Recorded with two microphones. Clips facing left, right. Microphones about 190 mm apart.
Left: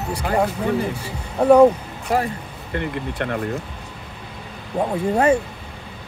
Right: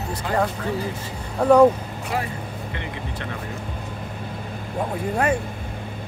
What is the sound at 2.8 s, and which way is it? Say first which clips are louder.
Speech: left 11 dB; 55° left (ahead or behind).